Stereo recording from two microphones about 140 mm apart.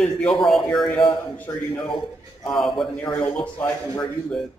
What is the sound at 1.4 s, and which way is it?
Speech, 30° left (ahead or behind).